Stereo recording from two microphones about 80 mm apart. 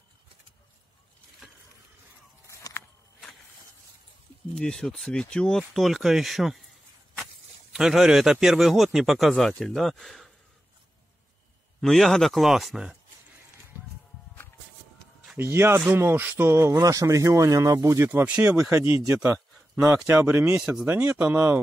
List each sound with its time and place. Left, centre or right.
2.4 s a sound: left
4.6 s a man's voice: centre
7.7 s a man's voice: centre
11.8 s a man's voice: centre
15.3 s speech: right
18.2 s speech: centre
18.7 s speech: right
20.2 s speech: right